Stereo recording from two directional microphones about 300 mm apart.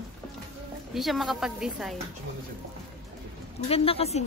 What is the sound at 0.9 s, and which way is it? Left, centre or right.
A woman's voice, centre.